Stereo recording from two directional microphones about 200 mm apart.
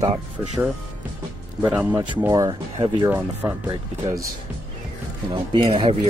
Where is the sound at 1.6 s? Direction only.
10° right (ahead or behind).